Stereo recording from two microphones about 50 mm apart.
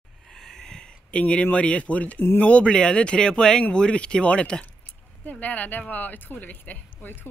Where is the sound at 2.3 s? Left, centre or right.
Left.